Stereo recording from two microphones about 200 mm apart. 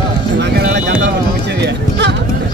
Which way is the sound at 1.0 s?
60° right (ahead or behind).